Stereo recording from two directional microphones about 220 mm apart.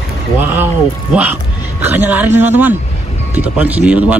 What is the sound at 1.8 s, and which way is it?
Speech, 10° right (ahead or behind).